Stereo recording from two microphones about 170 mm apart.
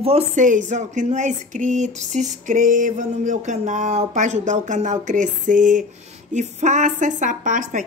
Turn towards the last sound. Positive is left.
turn(degrees=-50)  # may be behind; listen again after turning